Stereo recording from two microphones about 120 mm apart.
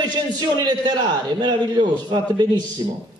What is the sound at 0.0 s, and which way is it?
A man's voice, 35° right (ahead or behind).